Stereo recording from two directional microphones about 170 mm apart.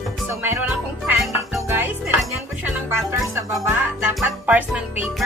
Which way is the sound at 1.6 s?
15° right (ahead or behind).